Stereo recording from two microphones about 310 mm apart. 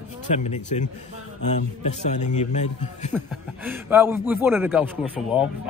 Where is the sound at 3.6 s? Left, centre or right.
Centre.